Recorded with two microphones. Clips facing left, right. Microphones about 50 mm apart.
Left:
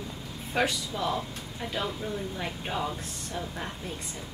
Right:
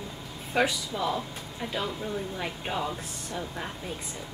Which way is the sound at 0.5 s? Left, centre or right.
Centre.